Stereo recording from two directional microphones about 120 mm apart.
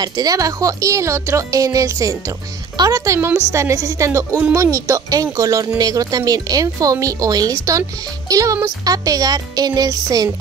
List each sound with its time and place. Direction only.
0.0 s speech: 35° right (ahead or behind)